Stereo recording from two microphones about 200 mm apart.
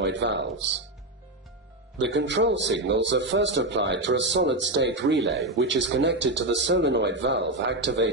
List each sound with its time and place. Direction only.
0.0 s a man's voice: 65° right (ahead or behind)
2.0 s a man's voice: 65° right (ahead or behind)
5.3 s speech: centre (ahead or behind)
5.6 s a man's voice: 60° right (ahead or behind)